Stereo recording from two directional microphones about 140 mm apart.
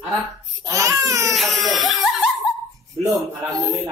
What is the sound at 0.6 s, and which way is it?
Speech, 20° right (ahead or behind).